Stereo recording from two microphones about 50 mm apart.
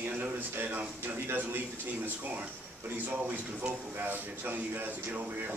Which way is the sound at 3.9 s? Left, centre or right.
Right.